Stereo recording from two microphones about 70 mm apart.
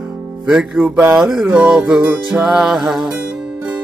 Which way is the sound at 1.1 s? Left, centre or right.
Centre.